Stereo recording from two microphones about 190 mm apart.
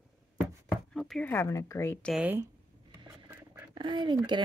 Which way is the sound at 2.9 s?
15° right (ahead or behind).